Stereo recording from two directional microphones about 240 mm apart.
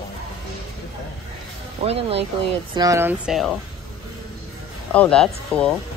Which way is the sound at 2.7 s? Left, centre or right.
Centre.